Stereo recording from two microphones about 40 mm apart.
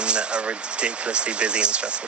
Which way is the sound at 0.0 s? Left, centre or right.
Right.